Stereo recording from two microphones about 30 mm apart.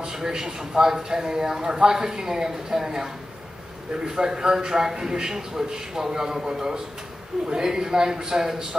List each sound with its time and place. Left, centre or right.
0.0 s speech: centre
3.9 s a man's voice: right
7.4 s speech: right